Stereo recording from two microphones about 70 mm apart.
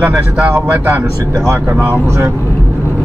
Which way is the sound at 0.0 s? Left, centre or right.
Right.